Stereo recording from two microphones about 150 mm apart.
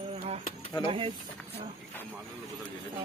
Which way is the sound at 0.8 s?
35° right (ahead or behind).